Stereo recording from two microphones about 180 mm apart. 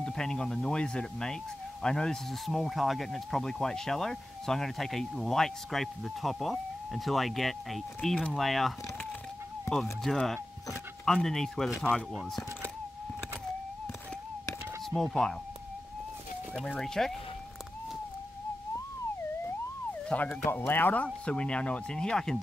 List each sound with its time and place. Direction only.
0.0 s speech: 5° left (ahead or behind)
10.0 s speech: 5° left (ahead or behind)
14.9 s speech: centre (ahead or behind)
16.5 s speech: 5° left (ahead or behind)
20.1 s speech: 5° left (ahead or behind)